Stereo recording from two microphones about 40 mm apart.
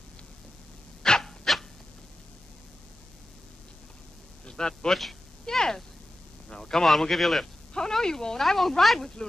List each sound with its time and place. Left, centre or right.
1.2 s dog: centre
4.5 s a man's voice: centre
7.7 s speech: centre